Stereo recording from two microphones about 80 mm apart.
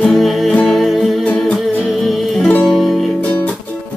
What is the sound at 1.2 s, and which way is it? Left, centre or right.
Music, centre.